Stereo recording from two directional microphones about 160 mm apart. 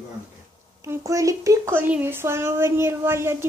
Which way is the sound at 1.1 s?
20° right (ahead or behind).